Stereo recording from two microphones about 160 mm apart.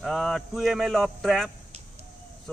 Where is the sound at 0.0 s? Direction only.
Centre (ahead or behind).